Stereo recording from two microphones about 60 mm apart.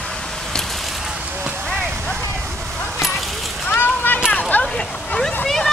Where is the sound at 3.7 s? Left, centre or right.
Left.